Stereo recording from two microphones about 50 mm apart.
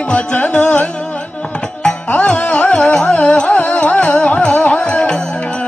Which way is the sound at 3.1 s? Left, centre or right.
Left.